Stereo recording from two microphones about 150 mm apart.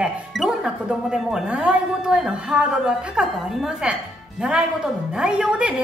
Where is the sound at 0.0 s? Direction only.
5° right (ahead or behind).